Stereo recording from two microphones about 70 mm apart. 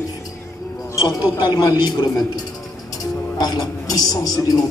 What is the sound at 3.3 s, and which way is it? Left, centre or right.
Speech, left.